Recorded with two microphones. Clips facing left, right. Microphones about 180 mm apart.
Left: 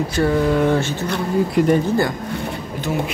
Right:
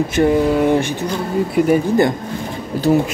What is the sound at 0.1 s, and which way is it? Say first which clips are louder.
Speech: right 3 dB; 15° right (ahead or behind).